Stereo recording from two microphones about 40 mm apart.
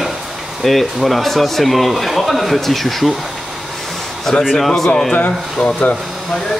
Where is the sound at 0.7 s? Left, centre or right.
Centre.